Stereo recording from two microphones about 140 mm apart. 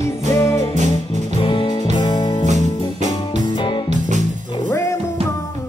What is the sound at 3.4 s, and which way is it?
Music, 35° left (ahead or behind).